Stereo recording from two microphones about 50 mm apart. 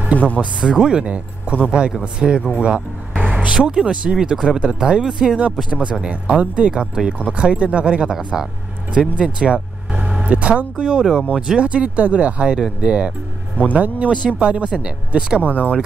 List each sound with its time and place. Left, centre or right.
0.4 s speech: centre
2.6 s vehicle: right
3.3 s speech: centre
5.7 s speech: right
9.1 s vehicle: centre
10.2 s speech: right
14.7 s speech: centre